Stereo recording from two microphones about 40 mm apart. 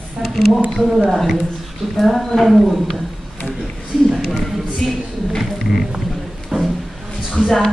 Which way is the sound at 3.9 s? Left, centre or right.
Centre.